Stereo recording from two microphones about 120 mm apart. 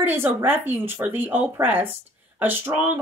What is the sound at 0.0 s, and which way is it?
A woman's voice, 15° right (ahead or behind).